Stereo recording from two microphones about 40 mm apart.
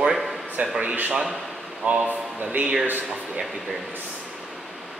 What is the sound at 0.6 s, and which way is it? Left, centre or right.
Speech, right.